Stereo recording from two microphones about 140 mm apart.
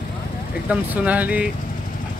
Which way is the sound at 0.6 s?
10° right (ahead or behind).